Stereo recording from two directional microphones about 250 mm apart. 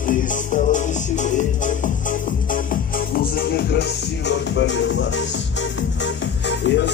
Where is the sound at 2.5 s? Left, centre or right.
Left.